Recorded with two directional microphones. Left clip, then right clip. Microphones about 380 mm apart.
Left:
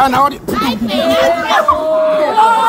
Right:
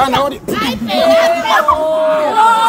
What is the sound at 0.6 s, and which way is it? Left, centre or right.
A child's voice, centre.